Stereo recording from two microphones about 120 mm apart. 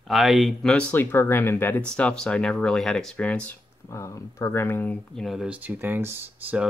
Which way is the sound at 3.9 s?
25° left (ahead or behind).